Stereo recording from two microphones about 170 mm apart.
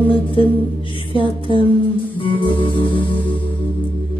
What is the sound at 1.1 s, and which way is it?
Music, 30° left (ahead or behind).